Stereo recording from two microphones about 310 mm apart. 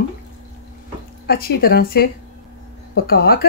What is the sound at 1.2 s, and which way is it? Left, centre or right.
Speech, left.